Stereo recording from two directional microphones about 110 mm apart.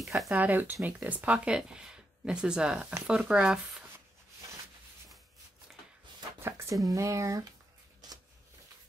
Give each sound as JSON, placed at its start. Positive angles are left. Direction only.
{"t": 0.3, "sound": "speech", "side_deg": -15}
{"t": 6.4, "sound": "a sound", "side_deg": -25}
{"t": 6.9, "sound": "speech", "side_deg": -30}